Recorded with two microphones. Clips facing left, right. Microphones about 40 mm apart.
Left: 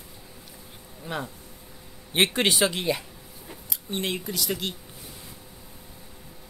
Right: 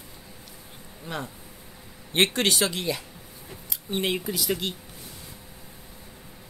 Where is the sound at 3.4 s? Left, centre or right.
Centre.